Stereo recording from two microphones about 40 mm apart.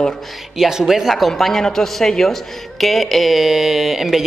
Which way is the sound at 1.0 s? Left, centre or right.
Centre.